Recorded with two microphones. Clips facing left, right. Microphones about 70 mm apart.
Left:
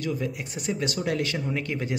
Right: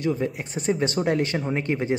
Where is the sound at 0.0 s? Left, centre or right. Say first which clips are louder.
Right 4 dB; right.